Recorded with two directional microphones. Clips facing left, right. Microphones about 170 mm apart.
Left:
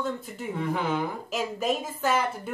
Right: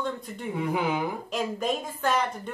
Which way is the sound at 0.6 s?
10° right (ahead or behind).